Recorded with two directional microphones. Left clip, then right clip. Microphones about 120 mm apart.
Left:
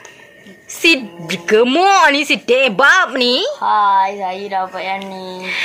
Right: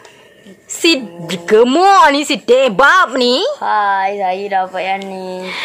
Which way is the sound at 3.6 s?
90° right.